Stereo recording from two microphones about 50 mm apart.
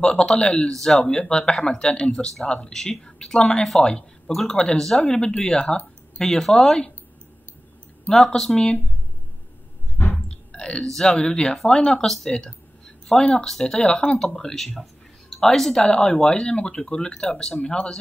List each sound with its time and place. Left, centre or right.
0.0 s speech: centre
4.3 s speech: centre
8.1 s speech: centre
9.9 s chewing: left
10.2 s chewing: centre
11.0 s speech: centre